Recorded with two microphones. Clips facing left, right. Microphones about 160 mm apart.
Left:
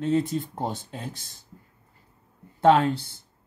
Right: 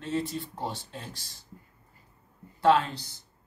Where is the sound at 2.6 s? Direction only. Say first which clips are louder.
Left 4 dB; 55° left (ahead or behind).